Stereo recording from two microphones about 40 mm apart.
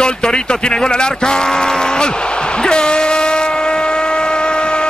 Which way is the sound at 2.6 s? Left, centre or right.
Left.